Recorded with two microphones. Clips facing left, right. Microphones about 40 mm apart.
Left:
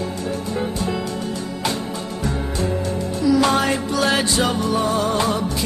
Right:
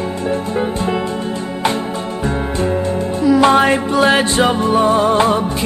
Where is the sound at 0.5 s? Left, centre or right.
Right.